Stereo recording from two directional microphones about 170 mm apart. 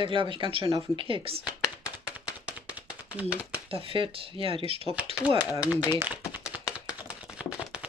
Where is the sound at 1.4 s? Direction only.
10° right (ahead or behind).